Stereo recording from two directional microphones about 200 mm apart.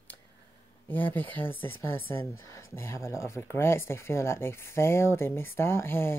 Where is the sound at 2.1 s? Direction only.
15° left (ahead or behind).